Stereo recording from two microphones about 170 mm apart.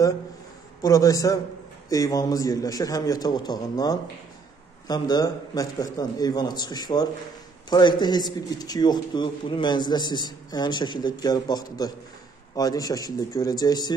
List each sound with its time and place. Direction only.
0.8 s a man's voice: 20° left (ahead or behind)